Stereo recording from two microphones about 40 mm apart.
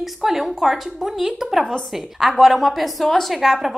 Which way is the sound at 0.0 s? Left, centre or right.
Centre.